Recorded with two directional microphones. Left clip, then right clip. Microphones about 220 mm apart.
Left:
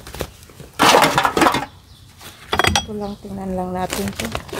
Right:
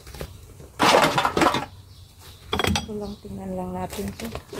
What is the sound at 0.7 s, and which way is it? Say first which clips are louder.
Breaking: left 5 dB; 35° left (ahead or behind).